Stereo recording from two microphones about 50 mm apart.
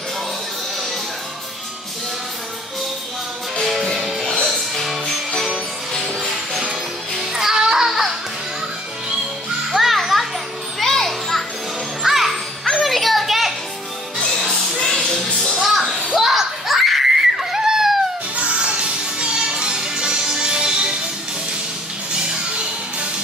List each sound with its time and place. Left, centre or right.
3.6 s music: centre
9.8 s children playing: centre
12.0 s music: centre
14.9 s music: centre
15.2 s music: left
15.6 s a sound: centre
18.3 s music: right